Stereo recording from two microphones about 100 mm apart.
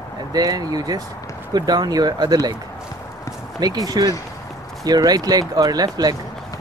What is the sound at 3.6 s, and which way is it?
Speech, 40° right (ahead or behind).